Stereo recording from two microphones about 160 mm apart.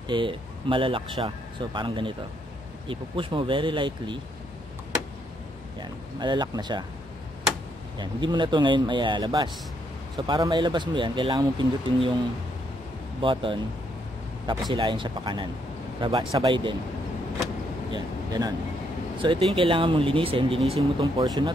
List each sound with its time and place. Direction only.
0.1 s speech: 30° right (ahead or behind)
5.8 s speech: 25° right (ahead or behind)
8.0 s speech: 30° right (ahead or behind)
13.2 s speech: 30° right (ahead or behind)
14.7 s speech: 30° right (ahead or behind)
17.9 s speech: 25° right (ahead or behind)